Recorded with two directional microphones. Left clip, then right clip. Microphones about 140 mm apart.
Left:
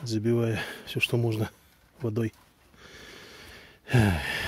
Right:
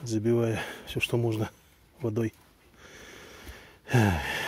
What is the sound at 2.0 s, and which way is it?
Speech, 45° left (ahead or behind).